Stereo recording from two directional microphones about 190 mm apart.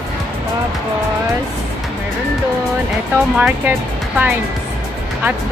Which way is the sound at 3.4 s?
5° right (ahead or behind).